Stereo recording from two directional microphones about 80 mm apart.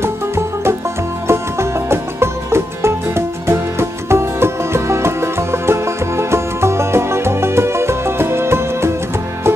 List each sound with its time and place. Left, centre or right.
1.2 s music: right